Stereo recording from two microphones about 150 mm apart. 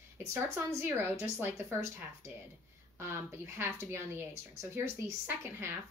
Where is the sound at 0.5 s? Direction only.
20° right (ahead or behind).